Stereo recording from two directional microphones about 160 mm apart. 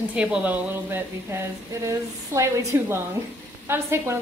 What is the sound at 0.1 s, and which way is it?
Speech, 5° right (ahead or behind).